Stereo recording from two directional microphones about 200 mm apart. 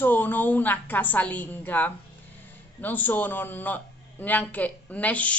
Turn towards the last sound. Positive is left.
turn(degrees=5)  # may be behind; listen again after turning